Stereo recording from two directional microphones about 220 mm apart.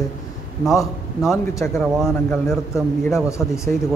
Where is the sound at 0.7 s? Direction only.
15° left (ahead or behind); by 2.4 s centre (ahead or behind).